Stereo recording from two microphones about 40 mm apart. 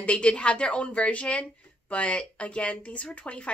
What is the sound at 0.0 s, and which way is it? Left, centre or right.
A woman's voice, left.